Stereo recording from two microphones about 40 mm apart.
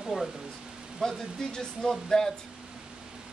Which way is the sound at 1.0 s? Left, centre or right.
Centre.